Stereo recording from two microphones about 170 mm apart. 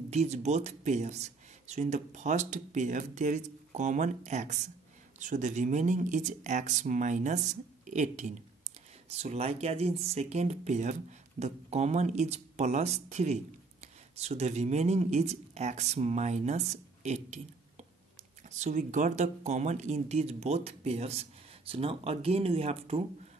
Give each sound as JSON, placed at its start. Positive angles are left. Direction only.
{"t": 0.1, "sound": "speech", "side_deg": -40}